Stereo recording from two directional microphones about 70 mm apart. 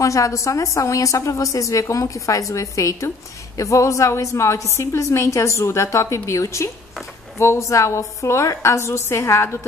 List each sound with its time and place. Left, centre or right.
0.0 s a woman's voice: left